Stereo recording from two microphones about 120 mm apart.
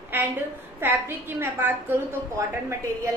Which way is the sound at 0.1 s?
15° right (ahead or behind).